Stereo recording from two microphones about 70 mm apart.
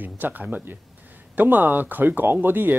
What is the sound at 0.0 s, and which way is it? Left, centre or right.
Speech, right.